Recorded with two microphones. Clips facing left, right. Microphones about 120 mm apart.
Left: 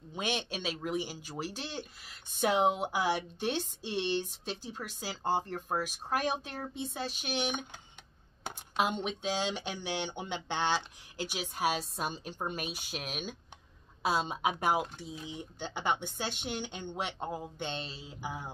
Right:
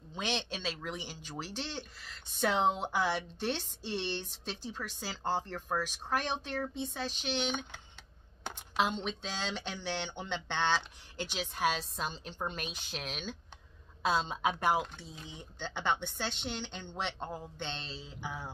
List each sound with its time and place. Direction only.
0.1 s speech: 10° left (ahead or behind)